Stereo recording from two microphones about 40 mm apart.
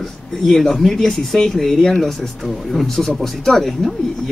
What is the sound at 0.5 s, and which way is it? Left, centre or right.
Speech, centre.